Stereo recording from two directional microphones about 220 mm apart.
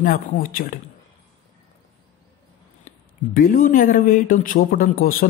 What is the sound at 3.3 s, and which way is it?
Speech, 40° left (ahead or behind).